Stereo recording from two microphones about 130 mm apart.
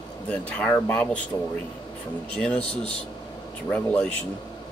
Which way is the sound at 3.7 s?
10° left (ahead or behind).